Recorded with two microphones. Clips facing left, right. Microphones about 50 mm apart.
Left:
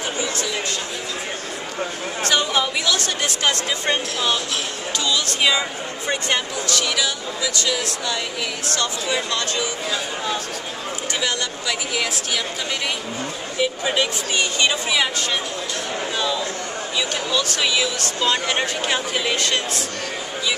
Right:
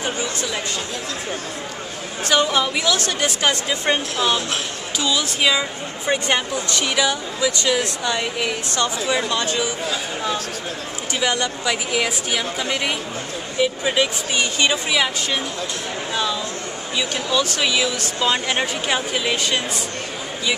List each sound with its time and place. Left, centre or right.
2.2 s speech: centre
6.0 s speech: centre
9.8 s speech: centre
11.2 s speech: centre
17.3 s speech: centre